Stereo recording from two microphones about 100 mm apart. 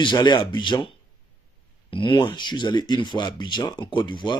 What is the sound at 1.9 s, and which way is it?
Speech, 55° left (ahead or behind).